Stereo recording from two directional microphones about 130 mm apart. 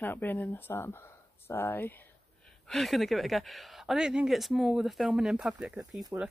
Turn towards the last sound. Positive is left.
turn(degrees=-20)  # may be behind; listen again after turning